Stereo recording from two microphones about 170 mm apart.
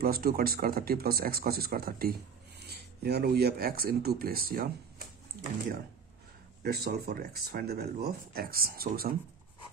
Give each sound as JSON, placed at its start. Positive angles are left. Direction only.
{"t": 0.0, "sound": "speech", "side_deg": -60}
{"t": 6.6, "sound": "speech", "side_deg": -70}